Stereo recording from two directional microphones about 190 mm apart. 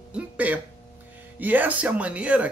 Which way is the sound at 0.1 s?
10° right (ahead or behind).